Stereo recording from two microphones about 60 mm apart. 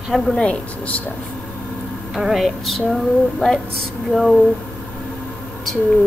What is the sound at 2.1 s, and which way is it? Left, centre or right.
A woman's voice, centre.